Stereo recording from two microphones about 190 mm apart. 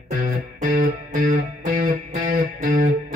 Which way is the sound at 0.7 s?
45° right (ahead or behind).